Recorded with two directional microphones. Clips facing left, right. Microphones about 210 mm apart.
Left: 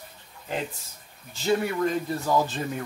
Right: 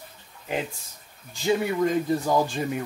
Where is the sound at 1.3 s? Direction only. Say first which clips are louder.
Right 1 dB; 15° right (ahead or behind).